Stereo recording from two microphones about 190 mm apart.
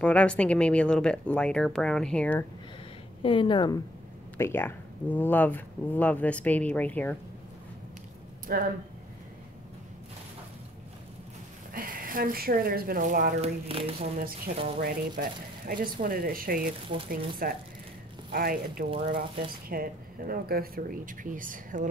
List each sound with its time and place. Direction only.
0.0 s speech: 5° left (ahead or behind)
3.2 s speech: 25° left (ahead or behind)
4.4 s speech: 10° left (ahead or behind)
8.5 s speech: 50° right (ahead or behind)
11.7 s speech: 50° right (ahead or behind)
13.7 s speech: 30° right (ahead or behind)
14.1 s speech: 50° right (ahead or behind)
18.9 s speech: 30° right (ahead or behind)
19.7 s speech: 50° right (ahead or behind)